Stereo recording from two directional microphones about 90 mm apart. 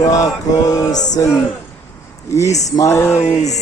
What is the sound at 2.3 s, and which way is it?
Mantra, 35° left (ahead or behind).